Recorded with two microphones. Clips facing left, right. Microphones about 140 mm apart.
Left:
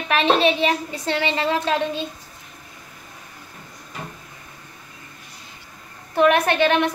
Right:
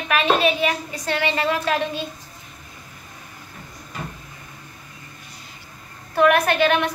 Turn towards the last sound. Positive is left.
turn(degrees=25)  # may be behind; listen again after turning